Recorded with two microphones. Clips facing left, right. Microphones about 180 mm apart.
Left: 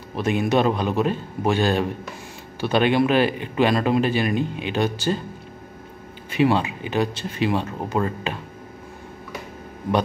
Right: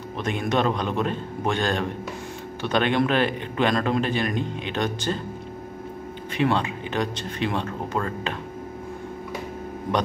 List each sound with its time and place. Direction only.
0.1 s speech: 5° left (ahead or behind)
6.3 s speech: 5° left (ahead or behind)